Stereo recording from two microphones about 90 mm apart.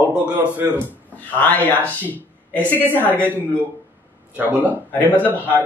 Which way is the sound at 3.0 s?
25° right (ahead or behind).